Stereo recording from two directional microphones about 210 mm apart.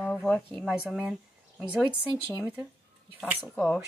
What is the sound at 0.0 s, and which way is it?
Speech, 5° left (ahead or behind).